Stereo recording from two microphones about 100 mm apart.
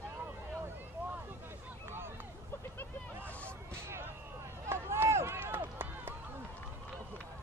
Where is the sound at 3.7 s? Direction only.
25° right (ahead or behind).